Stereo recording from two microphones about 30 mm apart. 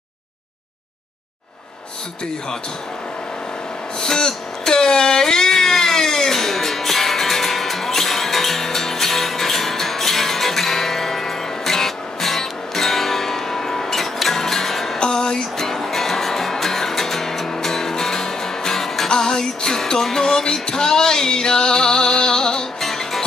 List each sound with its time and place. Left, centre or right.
4.0 s a sound: centre
15.0 s music: left
15.5 s music: centre
22.8 s music: centre